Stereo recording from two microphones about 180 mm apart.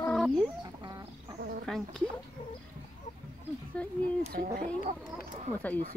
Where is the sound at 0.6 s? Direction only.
20° right (ahead or behind).